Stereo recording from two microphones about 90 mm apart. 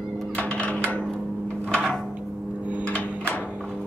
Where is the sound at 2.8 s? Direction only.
15° left (ahead or behind).